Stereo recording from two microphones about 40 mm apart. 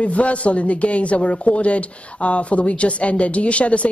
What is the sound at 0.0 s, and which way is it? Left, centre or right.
Speech, left.